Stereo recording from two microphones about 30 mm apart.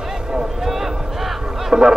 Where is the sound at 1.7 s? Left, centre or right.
Right.